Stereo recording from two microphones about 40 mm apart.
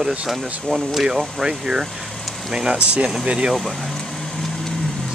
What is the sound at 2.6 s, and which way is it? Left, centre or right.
Speech, right.